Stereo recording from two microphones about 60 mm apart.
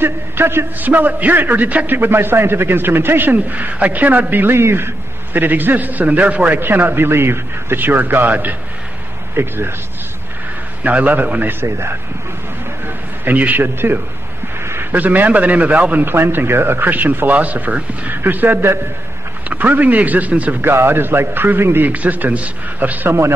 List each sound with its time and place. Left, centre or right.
0.0 s a man's voice: right
0.7 s a man's voice: right
6.6 s a man's voice: right
9.3 s a man's voice: right
10.8 s a man's voice: right
12.8 s a man's voice: right
14.6 s a sound: right
14.9 s a man's voice: right
16.1 s a man's voice: right
19.5 s a man's voice: right
20.6 s a man's voice: right
21.9 s a man's voice: right